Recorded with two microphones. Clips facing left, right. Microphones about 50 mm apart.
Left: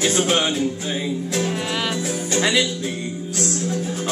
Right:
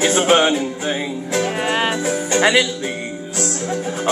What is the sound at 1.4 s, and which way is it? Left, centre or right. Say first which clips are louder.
Music: right 5 dB; right.